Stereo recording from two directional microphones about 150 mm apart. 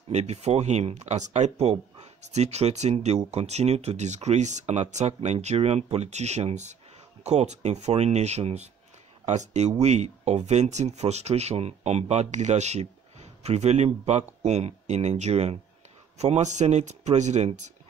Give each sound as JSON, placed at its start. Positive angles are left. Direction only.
{"t": 0.1, "sound": "speech", "side_deg": -45}